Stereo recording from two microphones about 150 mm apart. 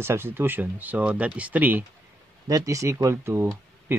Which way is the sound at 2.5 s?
20° right (ahead or behind).